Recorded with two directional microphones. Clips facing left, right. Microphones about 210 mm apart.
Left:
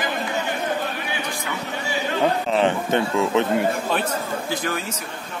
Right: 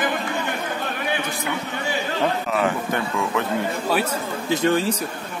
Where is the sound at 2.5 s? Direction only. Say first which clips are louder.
Left 3 dB; 25° left (ahead or behind).